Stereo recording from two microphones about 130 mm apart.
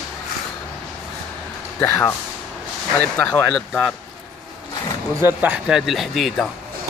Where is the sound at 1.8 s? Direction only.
15° left (ahead or behind); by 3.9 s centre (ahead or behind).